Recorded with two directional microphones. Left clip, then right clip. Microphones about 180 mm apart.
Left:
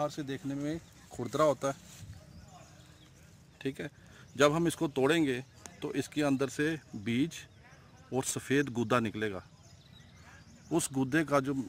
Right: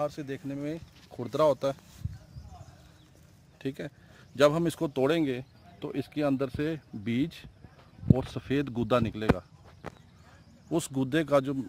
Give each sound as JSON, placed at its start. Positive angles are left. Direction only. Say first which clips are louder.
{"t": 0.0, "sound": "speech", "louder": "right 2 dB", "side_deg": -25}
{"t": 3.5, "sound": "speech", "louder": "right 1 dB", "side_deg": -65}
{"t": 8.2, "sound": "speech", "louder": "even", "side_deg": -50}
{"t": 11.0, "sound": "speech", "louder": "right 4 dB", "side_deg": -80}